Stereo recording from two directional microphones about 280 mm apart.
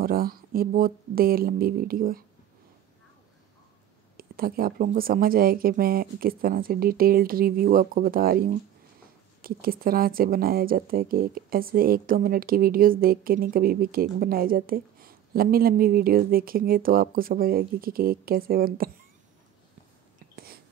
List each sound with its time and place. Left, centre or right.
0.0 s speech: right
4.2 s speech: right
20.3 s whispering: right